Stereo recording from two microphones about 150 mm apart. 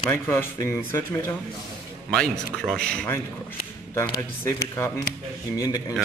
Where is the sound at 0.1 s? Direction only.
15° left (ahead or behind).